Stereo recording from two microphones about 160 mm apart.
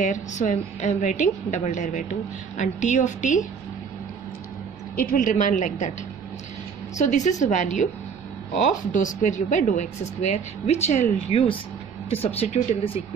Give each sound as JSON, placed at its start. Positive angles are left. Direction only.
{"t": 0.0, "sound": "speech", "side_deg": 50}
{"t": 4.9, "sound": "speech", "side_deg": 60}
{"t": 7.0, "sound": "speech", "side_deg": 50}
{"t": 8.9, "sound": "speech", "side_deg": 50}